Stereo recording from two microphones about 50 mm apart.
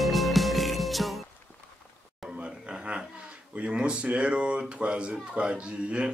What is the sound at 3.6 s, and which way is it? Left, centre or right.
A man's voice, right.